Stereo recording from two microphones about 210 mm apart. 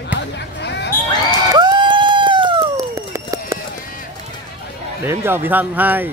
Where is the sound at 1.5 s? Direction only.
20° right (ahead or behind).